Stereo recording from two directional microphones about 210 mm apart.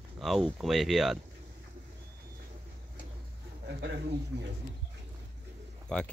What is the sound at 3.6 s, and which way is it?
Speech, 50° right (ahead or behind).